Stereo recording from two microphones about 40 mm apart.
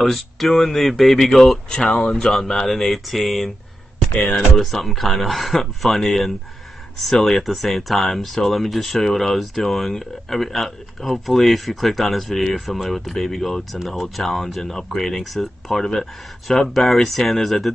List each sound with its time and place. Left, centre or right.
0.0 s speech: centre
1.7 s speech: centre
4.2 s speech: left
4.6 s speech: centre